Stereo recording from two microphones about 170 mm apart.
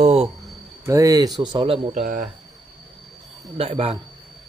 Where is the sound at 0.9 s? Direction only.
20° right (ahead or behind); by 2.2 s 45° right (ahead or behind).